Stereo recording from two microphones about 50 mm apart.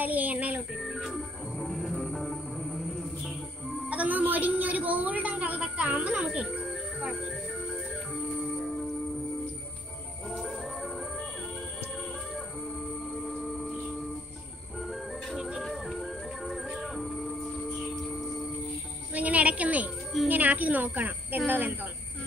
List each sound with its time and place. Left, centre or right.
0.0 s speech: right
0.7 s music: centre
3.9 s a sound: right
7.1 s music: centre
10.3 s organ: centre
13.1 s music: centre
14.8 s music: centre
19.1 s music: right
20.2 s a sound: right
21.5 s speech: right